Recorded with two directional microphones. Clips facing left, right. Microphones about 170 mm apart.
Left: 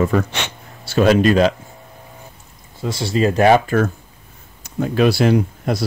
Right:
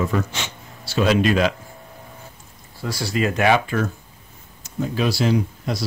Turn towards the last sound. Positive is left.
turn(degrees=55)  # may be behind; listen again after turning